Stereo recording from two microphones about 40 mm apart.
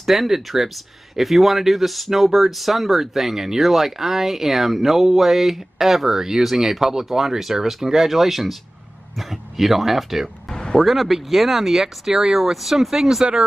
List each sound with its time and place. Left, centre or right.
0.0 s speech: centre
10.5 s a sound: centre
10.8 s speech: centre